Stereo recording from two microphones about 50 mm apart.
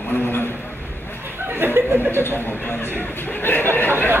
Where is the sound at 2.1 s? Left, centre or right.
Left.